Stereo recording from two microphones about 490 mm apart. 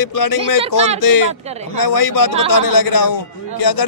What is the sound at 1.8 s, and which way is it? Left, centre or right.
A man's voice, left.